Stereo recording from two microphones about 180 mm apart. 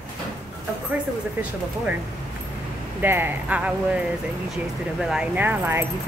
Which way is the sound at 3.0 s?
10° right (ahead or behind).